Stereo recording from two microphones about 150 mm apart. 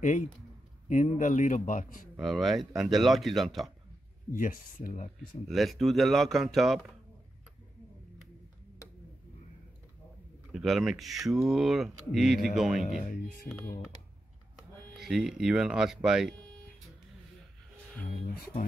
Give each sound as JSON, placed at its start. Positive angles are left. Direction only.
{"t": 0.0, "sound": "a man's voice", "side_deg": 55}
{"t": 2.1, "sound": "speech", "side_deg": 0}
{"t": 4.3, "sound": "a man's voice", "side_deg": 60}
{"t": 5.5, "sound": "speech", "side_deg": 0}
{"t": 10.5, "sound": "speech", "side_deg": 0}
{"t": 12.8, "sound": "a man's voice", "side_deg": 55}
{"t": 15.0, "sound": "speech", "side_deg": 0}
{"t": 18.0, "sound": "a man's voice", "side_deg": 60}